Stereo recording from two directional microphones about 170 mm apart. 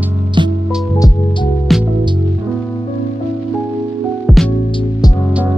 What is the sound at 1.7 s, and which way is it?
Music, centre (ahead or behind).